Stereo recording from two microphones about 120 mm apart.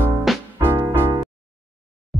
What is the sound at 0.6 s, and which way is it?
Music, 20° right (ahead or behind).